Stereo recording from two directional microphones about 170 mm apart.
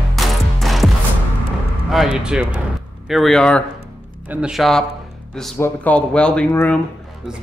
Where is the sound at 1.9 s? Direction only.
5° right (ahead or behind).